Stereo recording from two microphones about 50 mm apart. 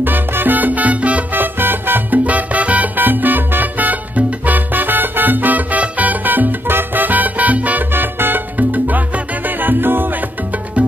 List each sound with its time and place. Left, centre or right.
0.0 s salsa music: right
1.3 s salsa music: right
4.5 s music: right
7.9 s salsa music: right
9.6 s music: right